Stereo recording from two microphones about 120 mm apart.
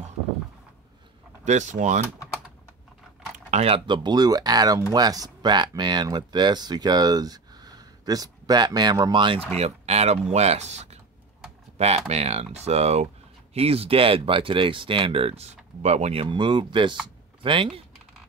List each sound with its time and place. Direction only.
1.4 s speech: 80° right
3.4 s a sound: 70° right (ahead or behind)
3.7 s speech: 40° right (ahead or behind)
9.6 s speech: 65° right (ahead or behind)
12.1 s speech: 60° right (ahead or behind)
16.3 s speech: 40° right (ahead or behind)